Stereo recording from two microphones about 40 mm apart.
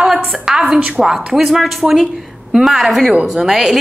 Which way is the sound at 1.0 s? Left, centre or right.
Centre.